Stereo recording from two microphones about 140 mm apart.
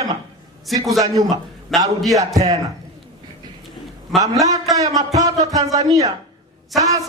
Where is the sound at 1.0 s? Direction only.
25° right (ahead or behind).